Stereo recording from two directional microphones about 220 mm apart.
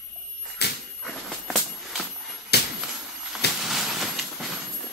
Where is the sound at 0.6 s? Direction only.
50° left (ahead or behind).